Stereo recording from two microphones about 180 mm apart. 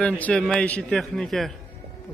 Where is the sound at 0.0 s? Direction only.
5° left (ahead or behind).